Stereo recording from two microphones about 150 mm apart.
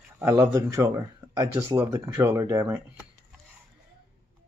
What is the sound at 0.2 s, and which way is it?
Speech, 15° right (ahead or behind).